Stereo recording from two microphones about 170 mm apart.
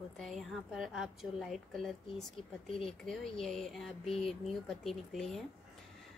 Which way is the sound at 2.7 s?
35° left (ahead or behind).